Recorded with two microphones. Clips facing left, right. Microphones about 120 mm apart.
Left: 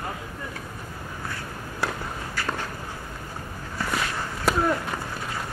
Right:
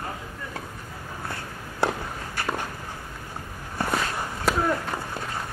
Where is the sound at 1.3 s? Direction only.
30° right (ahead or behind).